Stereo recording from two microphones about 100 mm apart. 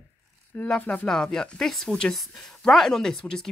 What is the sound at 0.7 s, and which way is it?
Speech, 10° left (ahead or behind).